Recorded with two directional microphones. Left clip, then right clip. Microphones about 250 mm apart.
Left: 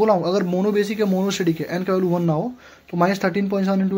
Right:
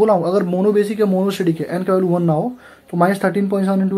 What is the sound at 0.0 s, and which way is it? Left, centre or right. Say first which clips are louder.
Speech: right 3 dB; centre.